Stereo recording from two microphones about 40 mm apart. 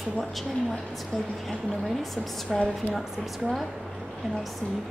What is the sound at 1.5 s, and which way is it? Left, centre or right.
A woman's voice, centre.